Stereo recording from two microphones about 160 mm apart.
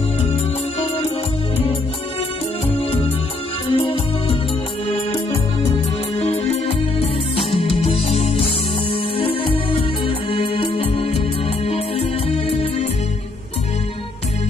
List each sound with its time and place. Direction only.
2.7 s music: 35° left (ahead or behind)
6.5 s music: 40° left (ahead or behind)